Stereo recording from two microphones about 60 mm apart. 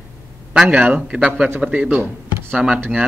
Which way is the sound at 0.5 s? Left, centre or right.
Centre.